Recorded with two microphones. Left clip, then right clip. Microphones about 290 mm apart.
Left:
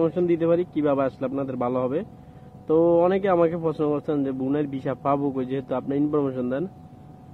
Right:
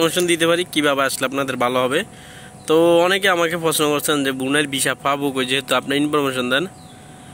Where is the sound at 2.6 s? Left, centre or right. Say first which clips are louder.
Right 5 dB; right.